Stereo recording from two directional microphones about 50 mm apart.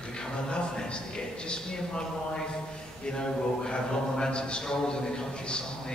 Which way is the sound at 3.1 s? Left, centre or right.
Centre.